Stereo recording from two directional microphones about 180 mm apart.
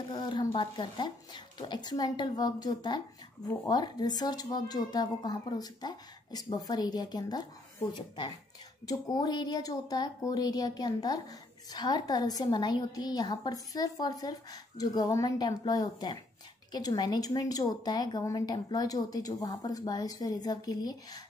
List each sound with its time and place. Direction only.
0.1 s speech: 25° left (ahead or behind)
8.8 s speech: 20° left (ahead or behind)